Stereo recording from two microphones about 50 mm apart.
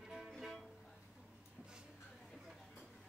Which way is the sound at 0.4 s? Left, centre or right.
Centre.